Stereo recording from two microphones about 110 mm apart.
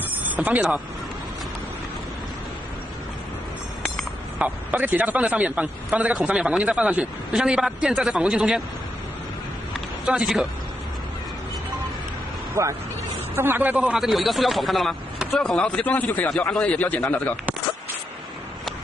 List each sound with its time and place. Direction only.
0.4 s a man's voice: 15° right (ahead or behind)
4.4 s a man's voice: 15° right (ahead or behind)
10.0 s speech: 5° right (ahead or behind)
12.6 s speech: 30° right (ahead or behind)
13.4 s a man's voice: 20° right (ahead or behind)
13.9 s speech: centre (ahead or behind); by 17.3 s 15° left (ahead or behind)